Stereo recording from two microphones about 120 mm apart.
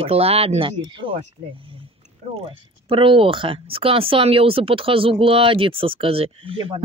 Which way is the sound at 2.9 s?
45° right (ahead or behind).